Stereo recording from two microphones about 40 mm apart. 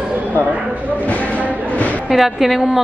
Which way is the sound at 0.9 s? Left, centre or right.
Left.